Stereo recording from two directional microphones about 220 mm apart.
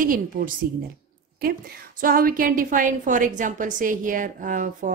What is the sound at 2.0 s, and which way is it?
A woman's voice, 40° right (ahead or behind).